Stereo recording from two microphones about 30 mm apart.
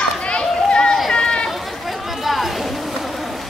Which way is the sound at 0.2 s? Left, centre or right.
Left.